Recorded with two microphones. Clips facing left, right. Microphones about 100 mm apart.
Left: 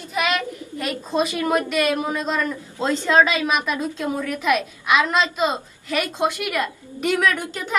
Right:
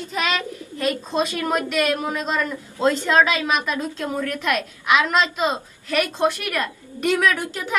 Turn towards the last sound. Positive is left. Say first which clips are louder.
# right 1 dB
turn(degrees=-10)  # may be behind; listen again after turning